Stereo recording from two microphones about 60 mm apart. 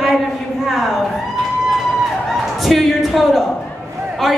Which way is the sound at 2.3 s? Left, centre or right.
Centre.